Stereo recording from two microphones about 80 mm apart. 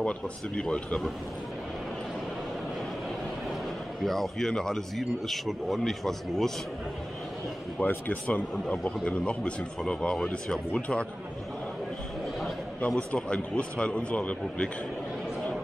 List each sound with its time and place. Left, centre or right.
0.6 s a man's voice: centre
4.0 s speech: centre
7.8 s a man's voice: left
12.8 s a man's voice: centre